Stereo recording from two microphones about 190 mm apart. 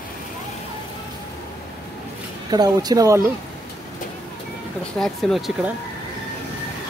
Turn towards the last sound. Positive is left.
turn(degrees=0)  # may be behind; listen again after turning